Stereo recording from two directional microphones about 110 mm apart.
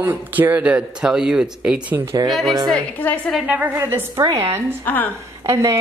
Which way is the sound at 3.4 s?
15° right (ahead or behind).